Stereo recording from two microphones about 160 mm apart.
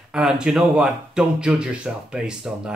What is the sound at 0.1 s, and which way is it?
A man's voice, 5° right (ahead or behind).